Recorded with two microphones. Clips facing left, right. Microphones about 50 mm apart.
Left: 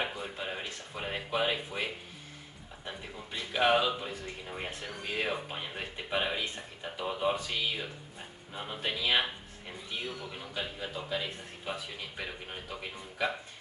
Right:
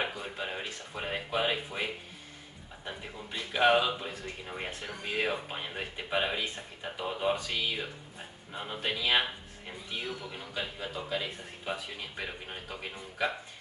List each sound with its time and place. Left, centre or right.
0.4 s a man's voice: centre